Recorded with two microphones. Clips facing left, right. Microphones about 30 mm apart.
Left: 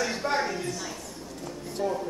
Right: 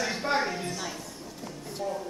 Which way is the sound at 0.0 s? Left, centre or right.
Centre.